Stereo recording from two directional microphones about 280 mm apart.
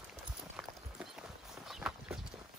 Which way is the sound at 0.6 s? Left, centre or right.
Centre.